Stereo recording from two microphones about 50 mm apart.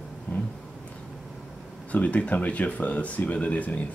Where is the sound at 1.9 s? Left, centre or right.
Left.